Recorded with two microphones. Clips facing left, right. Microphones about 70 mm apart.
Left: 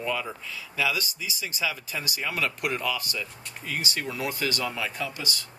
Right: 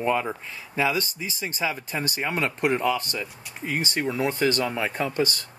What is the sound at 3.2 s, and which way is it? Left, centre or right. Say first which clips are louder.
Speech: right 4 dB; right.